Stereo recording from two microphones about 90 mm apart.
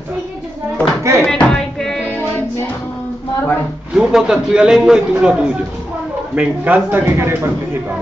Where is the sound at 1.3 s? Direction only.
10° left (ahead or behind).